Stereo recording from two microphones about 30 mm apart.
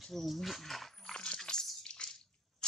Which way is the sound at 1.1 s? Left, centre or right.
Left.